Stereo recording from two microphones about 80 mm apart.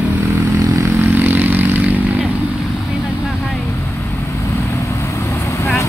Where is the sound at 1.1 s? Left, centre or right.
Right.